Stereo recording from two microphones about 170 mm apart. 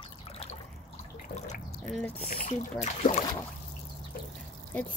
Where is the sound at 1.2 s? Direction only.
45° left (ahead or behind).